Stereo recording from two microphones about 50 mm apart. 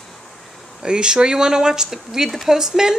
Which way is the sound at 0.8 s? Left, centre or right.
Centre.